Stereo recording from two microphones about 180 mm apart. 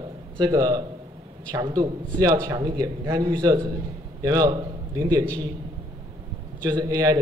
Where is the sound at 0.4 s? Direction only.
25° right (ahead or behind).